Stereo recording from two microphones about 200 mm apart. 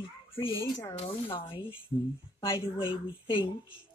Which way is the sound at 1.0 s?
30° left (ahead or behind).